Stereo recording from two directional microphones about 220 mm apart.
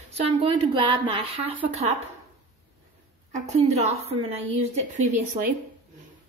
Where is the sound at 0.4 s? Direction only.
25° right (ahead or behind).